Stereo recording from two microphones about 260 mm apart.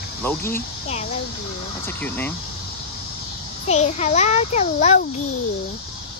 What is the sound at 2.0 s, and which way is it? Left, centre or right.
Speech, centre.